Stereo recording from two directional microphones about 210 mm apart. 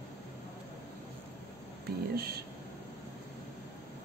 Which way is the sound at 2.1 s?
50° right (ahead or behind).